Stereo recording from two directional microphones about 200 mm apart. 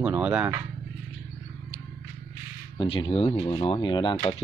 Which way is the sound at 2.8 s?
25° left (ahead or behind).